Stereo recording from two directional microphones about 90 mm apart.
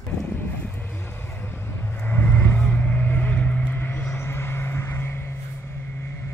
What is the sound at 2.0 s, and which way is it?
Vehicle, 20° left (ahead or behind).